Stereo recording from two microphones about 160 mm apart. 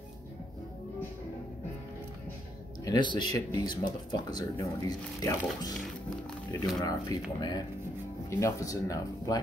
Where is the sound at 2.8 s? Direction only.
25° left (ahead or behind).